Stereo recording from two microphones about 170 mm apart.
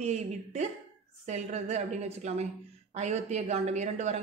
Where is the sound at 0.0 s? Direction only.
40° right (ahead or behind).